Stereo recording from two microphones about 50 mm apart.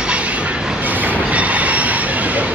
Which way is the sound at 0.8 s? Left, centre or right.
Right.